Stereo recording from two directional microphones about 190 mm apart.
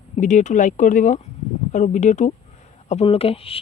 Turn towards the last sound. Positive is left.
turn(degrees=30)  # may be behind; listen again after turning